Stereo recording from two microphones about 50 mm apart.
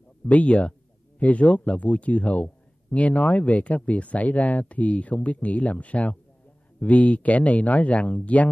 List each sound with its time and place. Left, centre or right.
0.3 s speech: left